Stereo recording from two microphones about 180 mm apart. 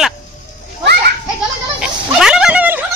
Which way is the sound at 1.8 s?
5° right (ahead or behind).